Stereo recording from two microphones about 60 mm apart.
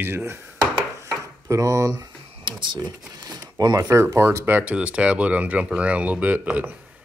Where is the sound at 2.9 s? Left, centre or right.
Right.